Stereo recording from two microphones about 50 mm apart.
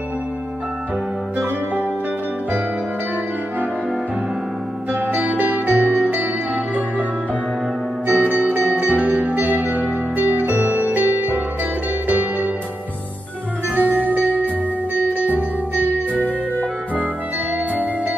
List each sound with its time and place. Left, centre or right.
4.9 s music: right
8.1 s music: right
13.7 s music: right